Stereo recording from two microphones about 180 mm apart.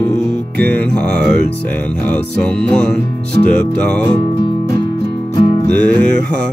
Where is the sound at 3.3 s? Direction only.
65° right (ahead or behind).